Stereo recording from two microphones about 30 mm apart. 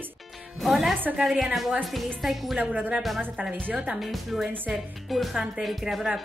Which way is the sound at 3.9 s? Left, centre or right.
Centre.